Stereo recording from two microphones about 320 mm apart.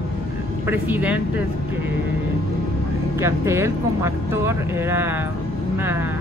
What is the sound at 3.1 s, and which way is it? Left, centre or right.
Speech, centre.